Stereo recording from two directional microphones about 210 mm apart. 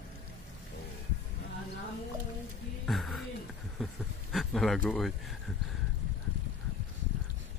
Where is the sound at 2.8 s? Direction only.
Centre (ahead or behind).